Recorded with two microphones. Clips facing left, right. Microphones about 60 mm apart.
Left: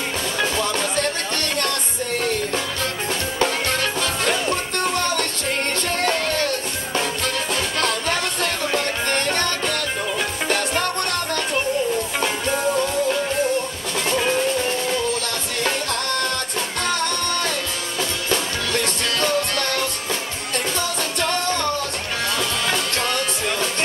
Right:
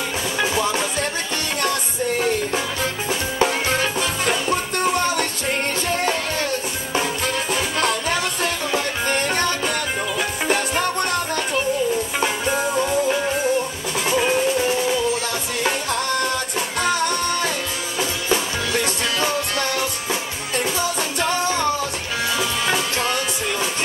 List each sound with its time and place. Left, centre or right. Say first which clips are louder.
0.4 s music: right 2 dB; centre